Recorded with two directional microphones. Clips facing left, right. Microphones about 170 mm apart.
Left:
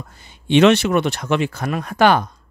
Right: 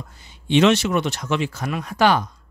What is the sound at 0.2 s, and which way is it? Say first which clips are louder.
Speech: left 3 dB; 60° left (ahead or behind).